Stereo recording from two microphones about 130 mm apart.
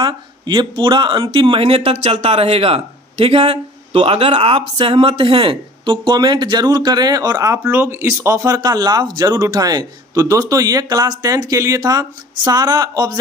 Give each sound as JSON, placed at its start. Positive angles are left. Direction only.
{"t": 0.0, "sound": "speech", "side_deg": -35}